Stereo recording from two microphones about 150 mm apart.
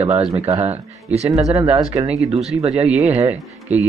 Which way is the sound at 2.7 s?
10° right (ahead or behind).